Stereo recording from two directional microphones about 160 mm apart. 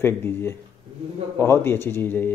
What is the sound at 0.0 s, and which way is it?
Speech, 15° left (ahead or behind).